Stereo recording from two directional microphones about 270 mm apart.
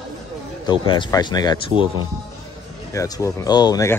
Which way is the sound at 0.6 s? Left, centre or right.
Centre.